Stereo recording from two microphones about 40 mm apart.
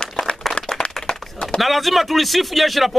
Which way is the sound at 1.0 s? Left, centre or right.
Left.